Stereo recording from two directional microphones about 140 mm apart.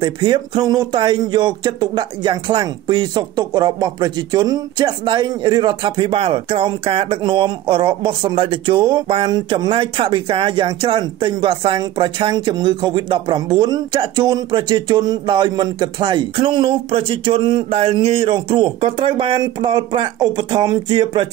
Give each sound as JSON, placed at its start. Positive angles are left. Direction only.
{"t": 0.0, "sound": "speech", "side_deg": -35}